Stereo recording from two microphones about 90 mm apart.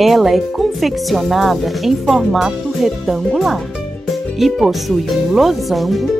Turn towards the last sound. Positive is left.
turn(degrees=0)  # may be behind; listen again after turning